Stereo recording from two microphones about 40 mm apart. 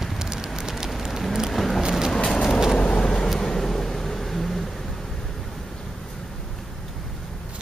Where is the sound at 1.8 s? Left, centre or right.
Centre.